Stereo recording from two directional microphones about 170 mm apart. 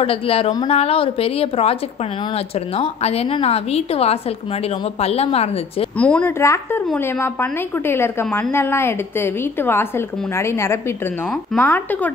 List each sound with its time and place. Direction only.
0.0 s a woman's voice: 35° left (ahead or behind)
5.9 s a woman's voice: 10° left (ahead or behind)